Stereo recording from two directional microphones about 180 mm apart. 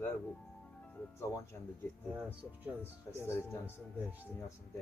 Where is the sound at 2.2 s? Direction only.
10° right (ahead or behind).